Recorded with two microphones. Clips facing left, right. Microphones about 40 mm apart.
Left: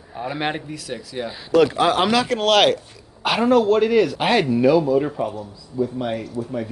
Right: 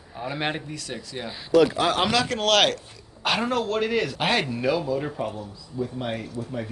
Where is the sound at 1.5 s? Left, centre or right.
Left.